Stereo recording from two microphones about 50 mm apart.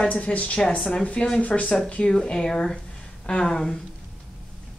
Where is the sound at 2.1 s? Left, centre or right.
Centre.